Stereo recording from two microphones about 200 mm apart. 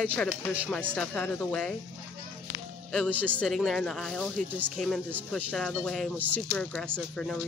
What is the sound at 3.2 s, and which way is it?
Speech, 5° left (ahead or behind).